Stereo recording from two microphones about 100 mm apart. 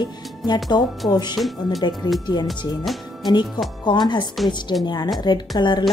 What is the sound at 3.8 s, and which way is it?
A woman's voice, 50° left (ahead or behind).